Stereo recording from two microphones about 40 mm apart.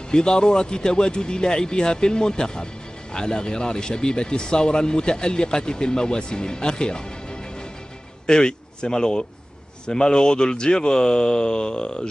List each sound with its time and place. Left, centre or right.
0.1 s a man's voice: left